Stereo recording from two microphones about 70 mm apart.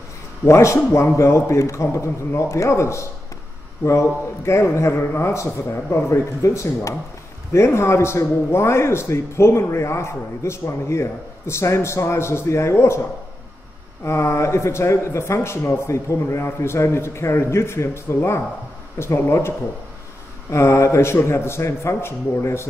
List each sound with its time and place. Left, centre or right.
0.5 s a man's voice: left
14.0 s a man's voice: left
20.5 s a man's voice: left